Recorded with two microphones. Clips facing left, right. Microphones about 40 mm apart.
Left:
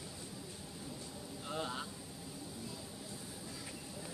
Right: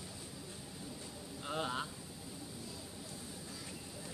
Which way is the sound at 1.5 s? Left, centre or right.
Right.